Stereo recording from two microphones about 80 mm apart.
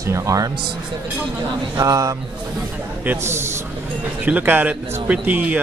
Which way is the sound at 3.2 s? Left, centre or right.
Right.